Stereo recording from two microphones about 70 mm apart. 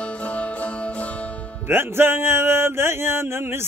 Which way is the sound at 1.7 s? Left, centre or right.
Right.